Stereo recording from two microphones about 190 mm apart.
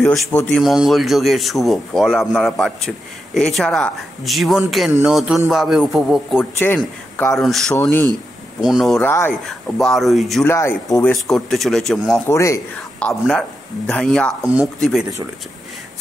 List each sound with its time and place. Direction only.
0.0 s a man's voice: 10° left (ahead or behind)
8.5 s a man's voice: centre (ahead or behind)
10.4 s speech: 10° left (ahead or behind)
11.2 s a man's voice: centre (ahead or behind)
12.3 s speech: 15° left (ahead or behind)
13.0 s a man's voice: 5° left (ahead or behind)